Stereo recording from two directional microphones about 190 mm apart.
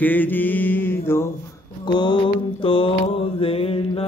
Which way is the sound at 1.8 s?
25° left (ahead or behind).